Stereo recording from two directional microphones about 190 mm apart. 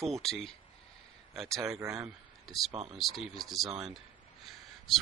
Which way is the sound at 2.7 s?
30° right (ahead or behind).